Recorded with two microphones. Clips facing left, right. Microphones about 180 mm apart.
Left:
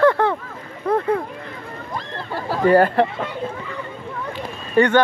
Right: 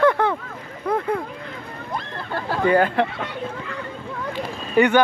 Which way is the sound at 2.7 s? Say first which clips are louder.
Left 4 dB; 5° left (ahead or behind).